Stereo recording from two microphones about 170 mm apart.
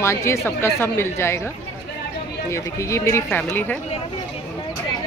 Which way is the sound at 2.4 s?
15° left (ahead or behind).